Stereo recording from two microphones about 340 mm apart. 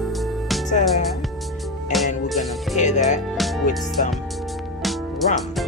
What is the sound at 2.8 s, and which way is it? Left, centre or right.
Music, left.